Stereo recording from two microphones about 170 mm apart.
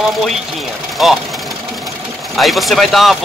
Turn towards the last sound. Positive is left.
turn(degrees=0)  # may be behind; listen again after turning